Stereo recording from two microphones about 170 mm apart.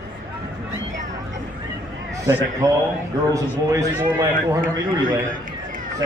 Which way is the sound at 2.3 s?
15° right (ahead or behind).